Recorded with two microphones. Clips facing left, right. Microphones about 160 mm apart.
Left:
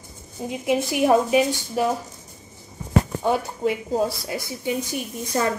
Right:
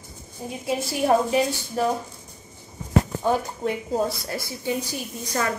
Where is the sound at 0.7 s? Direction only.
15° left (ahead or behind).